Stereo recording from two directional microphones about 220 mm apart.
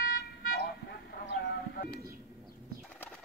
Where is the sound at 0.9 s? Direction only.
45° left (ahead or behind).